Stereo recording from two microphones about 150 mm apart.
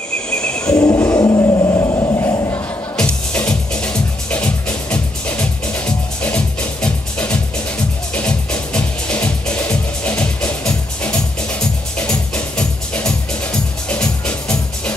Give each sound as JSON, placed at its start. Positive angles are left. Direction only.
{"t": 0.3, "sound": "wild animals", "side_deg": 5}
{"t": 0.8, "sound": "music", "side_deg": 20}
{"t": 3.0, "sound": "music", "side_deg": 10}